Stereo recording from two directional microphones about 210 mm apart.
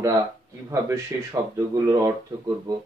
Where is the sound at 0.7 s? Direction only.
15° right (ahead or behind).